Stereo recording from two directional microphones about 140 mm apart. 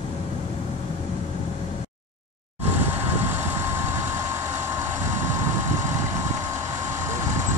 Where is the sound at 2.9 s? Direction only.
15° right (ahead or behind).